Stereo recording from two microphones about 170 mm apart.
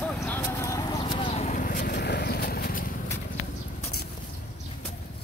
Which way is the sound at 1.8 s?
70° left (ahead or behind).